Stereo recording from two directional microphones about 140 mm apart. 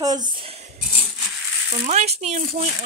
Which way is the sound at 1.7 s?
55° right (ahead or behind).